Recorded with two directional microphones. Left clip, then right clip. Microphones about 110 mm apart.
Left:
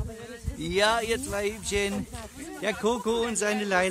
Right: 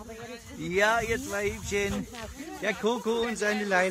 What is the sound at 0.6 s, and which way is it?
Speech, 15° left (ahead or behind).